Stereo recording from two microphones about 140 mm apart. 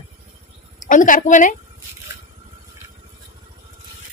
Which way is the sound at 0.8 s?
70° left (ahead or behind).